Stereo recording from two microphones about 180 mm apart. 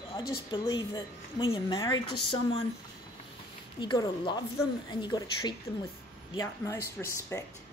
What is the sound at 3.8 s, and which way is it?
Speech, 25° left (ahead or behind).